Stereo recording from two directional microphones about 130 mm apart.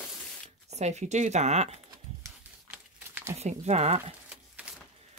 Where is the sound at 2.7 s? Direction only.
15° right (ahead or behind).